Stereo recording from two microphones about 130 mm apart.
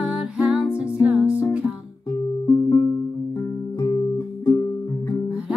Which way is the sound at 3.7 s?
30° left (ahead or behind).